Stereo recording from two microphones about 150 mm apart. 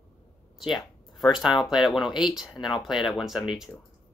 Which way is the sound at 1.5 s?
30° left (ahead or behind).